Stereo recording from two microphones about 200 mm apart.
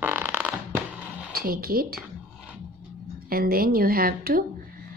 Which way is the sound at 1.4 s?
45° right (ahead or behind).